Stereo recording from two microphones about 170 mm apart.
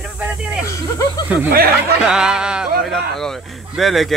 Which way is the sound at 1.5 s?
60° right (ahead or behind).